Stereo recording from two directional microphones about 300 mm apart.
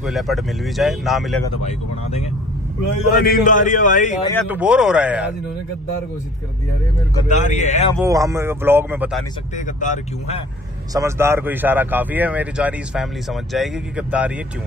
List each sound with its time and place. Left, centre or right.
0.0 s a man's voice: centre
3.3 s a man's voice: left
4.4 s a man's voice: centre
7.2 s a man's voice: left
8.0 s a man's voice: centre
9.8 s a man's voice: left
10.9 s a man's voice: centre